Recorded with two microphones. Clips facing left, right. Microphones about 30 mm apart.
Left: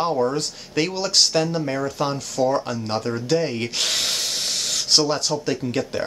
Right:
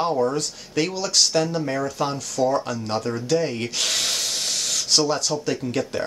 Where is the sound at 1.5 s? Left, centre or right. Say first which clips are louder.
Left 1 dB; centre.